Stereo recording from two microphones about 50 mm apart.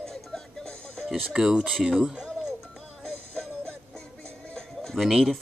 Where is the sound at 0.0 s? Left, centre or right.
Centre.